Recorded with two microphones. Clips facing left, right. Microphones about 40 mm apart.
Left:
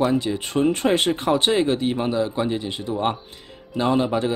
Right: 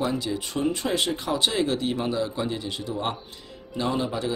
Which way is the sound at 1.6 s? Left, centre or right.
Left.